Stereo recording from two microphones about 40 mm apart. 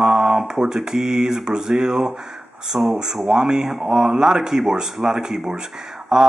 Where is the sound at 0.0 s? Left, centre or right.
Centre.